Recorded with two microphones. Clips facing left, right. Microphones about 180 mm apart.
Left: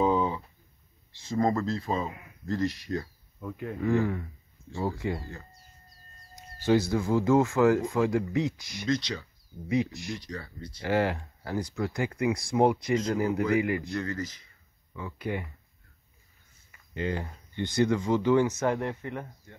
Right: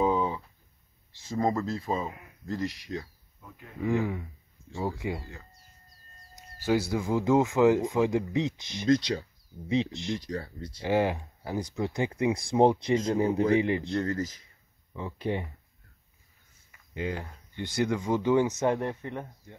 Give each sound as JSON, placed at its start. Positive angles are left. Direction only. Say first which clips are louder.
{"t": 0.0, "sound": "a sound", "louder": "left 1 dB", "side_deg": -5}
{"t": 1.3, "sound": "speech", "louder": "left 1 dB", "side_deg": -10}
{"t": 3.3, "sound": "speech", "louder": "left 14 dB", "side_deg": 80}
{"t": 3.8, "sound": "speech", "louder": "left 1 dB", "side_deg": -10}
{"t": 6.6, "sound": "speech", "louder": "left 2 dB", "side_deg": -10}
{"t": 8.8, "sound": "speech", "louder": "right 5 dB", "side_deg": -40}
{"t": 9.7, "sound": "speech", "louder": "even", "side_deg": -25}
{"t": 10.8, "sound": "speech", "louder": "right 1 dB", "side_deg": -15}
{"t": 14.0, "sound": "speech", "louder": "right 3 dB", "side_deg": -45}
{"t": 15.0, "sound": "speech", "louder": "right 2 dB", "side_deg": -25}
{"t": 16.9, "sound": "speech", "louder": "left 2 dB", "side_deg": -10}